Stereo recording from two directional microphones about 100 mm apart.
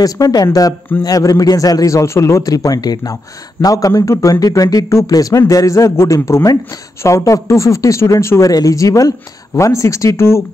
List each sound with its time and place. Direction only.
0.0 s a man's voice: 40° left (ahead or behind)